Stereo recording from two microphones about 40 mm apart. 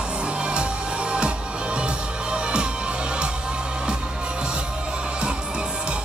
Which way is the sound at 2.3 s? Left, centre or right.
Right.